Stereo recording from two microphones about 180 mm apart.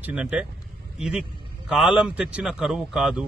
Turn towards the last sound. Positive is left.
turn(degrees=-5)  # may be behind; listen again after turning